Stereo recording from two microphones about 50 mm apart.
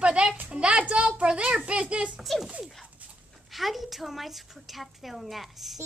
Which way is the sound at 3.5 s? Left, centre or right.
Centre.